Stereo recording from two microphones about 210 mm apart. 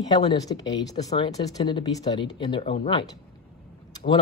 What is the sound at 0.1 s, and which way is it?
Speech, 20° left (ahead or behind).